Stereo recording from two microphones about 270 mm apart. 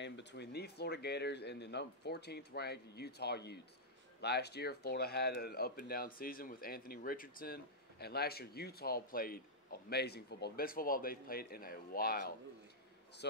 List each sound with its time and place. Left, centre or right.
0.0 s speech: left